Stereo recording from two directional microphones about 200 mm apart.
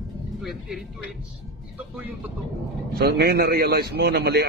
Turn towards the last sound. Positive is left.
turn(degrees=-55)  # may be behind; listen again after turning